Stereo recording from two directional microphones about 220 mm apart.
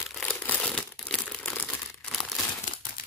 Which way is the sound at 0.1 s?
5° left (ahead or behind).